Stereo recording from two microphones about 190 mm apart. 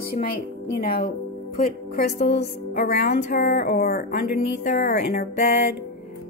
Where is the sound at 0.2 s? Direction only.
50° left (ahead or behind).